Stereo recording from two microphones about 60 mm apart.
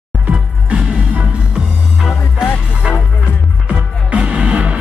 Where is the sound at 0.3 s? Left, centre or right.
Centre.